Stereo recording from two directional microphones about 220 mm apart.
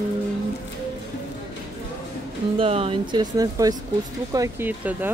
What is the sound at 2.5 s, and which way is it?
Speech, 25° right (ahead or behind).